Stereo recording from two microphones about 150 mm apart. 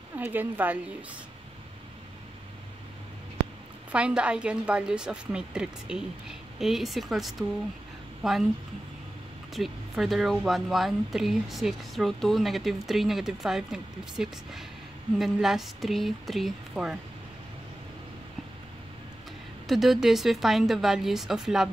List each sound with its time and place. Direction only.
0.1 s a woman's voice: 10° right (ahead or behind)
3.9 s a woman's voice: 5° right (ahead or behind)
9.5 s speech: centre (ahead or behind)
19.7 s speech: centre (ahead or behind)